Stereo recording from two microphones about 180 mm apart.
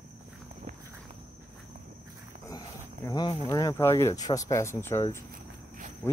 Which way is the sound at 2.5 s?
20° left (ahead or behind).